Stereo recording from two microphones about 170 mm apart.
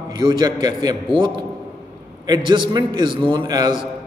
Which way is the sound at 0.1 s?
25° right (ahead or behind).